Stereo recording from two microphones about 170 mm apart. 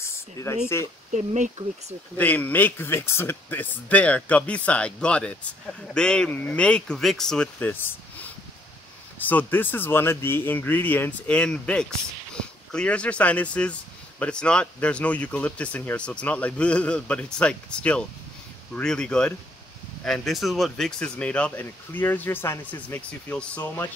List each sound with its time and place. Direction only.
0.0 s a sound: 15° left (ahead or behind)
1.1 s speech: 45° right (ahead or behind)
2.1 s speech: 10° left (ahead or behind)
9.2 s speech: 10° left (ahead or behind)